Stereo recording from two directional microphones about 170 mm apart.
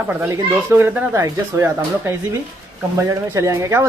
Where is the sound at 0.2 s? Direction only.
10° right (ahead or behind).